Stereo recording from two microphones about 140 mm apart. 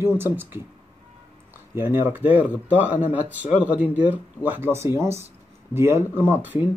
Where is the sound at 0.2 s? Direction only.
15° right (ahead or behind).